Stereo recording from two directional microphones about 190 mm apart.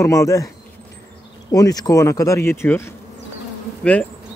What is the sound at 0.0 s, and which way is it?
Speech, 15° left (ahead or behind).